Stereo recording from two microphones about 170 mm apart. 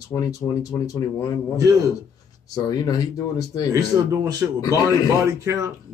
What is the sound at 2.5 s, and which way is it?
Speech, 20° left (ahead or behind).